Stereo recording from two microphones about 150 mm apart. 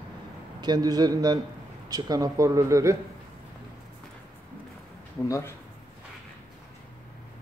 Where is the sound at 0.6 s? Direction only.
25° right (ahead or behind).